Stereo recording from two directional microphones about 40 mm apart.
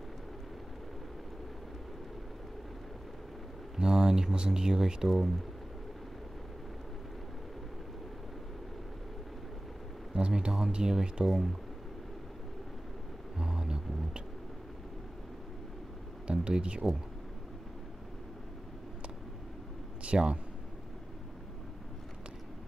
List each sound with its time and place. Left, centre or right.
3.7 s speech: centre
10.1 s speech: right
11.2 s speech: centre
13.4 s vehicle: centre
16.3 s speech: right
20.0 s speech: right